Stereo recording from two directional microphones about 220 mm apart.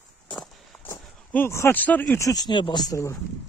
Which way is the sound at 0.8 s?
10° left (ahead or behind).